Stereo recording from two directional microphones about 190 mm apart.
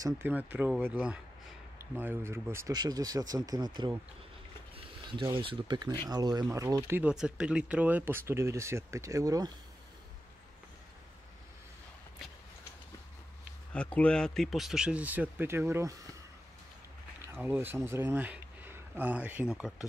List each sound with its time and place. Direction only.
0.0 s speech: 10° right (ahead or behind)
5.3 s speech: 25° right (ahead or behind)
13.7 s speech: 5° left (ahead or behind); by 16.0 s 15° right (ahead or behind)
17.3 s speech: 10° right (ahead or behind)